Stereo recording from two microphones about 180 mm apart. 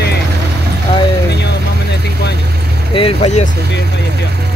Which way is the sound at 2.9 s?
35° left (ahead or behind).